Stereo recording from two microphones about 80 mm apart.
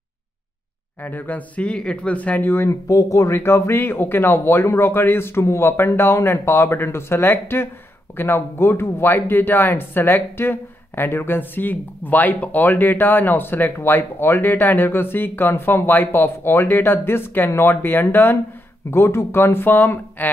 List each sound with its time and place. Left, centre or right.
1.0 s speech: left
2.7 s speech: left